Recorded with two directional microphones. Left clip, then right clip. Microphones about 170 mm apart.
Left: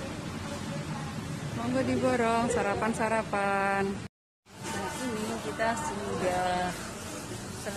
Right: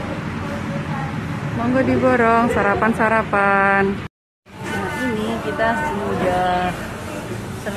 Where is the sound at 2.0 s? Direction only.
Centre (ahead or behind).